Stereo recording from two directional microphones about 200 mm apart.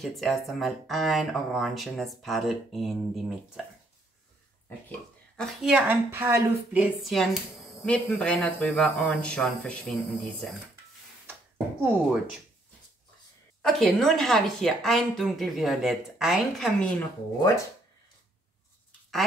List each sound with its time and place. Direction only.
0.0 s a woman's voice: centre (ahead or behind)
5.4 s a woman's voice: centre (ahead or behind)
13.6 s a woman's voice: centre (ahead or behind)
17.4 s speech: 15° left (ahead or behind)